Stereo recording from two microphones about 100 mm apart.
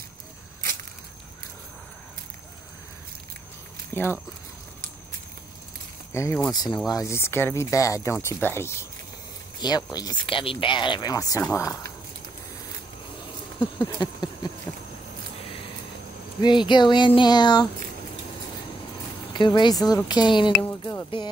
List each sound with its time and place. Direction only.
3.9 s speech: 25° left (ahead or behind)
6.5 s speech: 45° left (ahead or behind)
6.9 s speech: 30° left (ahead or behind)
9.6 s speech: 45° left (ahead or behind)
10.2 s speech: 60° left (ahead or behind); by 11.9 s 30° left (ahead or behind)
13.6 s a sound: 50° left (ahead or behind)
16.3 s speech: 50° left (ahead or behind)
19.3 s speech: 50° left (ahead or behind)